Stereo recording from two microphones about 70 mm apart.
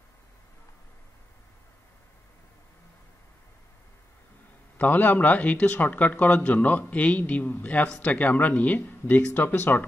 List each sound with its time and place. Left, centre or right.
4.7 s speech: left